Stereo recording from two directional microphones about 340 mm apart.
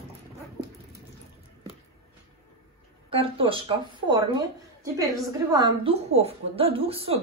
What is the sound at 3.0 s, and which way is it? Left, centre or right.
Speech, centre.